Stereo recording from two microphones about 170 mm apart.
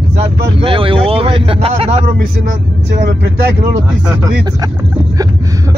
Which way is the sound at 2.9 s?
90° right.